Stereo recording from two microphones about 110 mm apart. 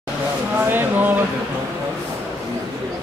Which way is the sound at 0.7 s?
20° right (ahead or behind).